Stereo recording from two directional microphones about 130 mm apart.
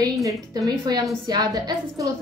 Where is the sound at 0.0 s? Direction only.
30° right (ahead or behind).